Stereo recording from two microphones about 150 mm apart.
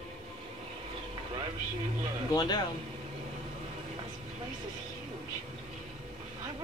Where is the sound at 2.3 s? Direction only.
25° left (ahead or behind).